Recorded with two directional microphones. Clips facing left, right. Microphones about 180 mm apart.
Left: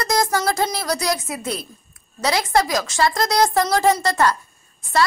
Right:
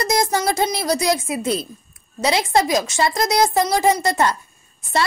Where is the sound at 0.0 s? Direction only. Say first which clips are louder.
Right 1 dB; 25° right (ahead or behind).